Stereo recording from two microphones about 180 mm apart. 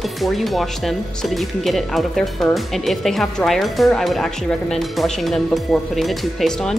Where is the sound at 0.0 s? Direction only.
Centre (ahead or behind).